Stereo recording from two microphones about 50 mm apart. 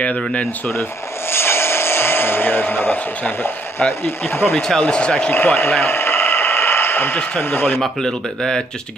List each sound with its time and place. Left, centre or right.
0.0 s speech: left
1.3 s speech: left
4.6 s speech: centre
5.3 s speech: left
5.8 s a sound: left
7.4 s speech: left
7.8 s speech: centre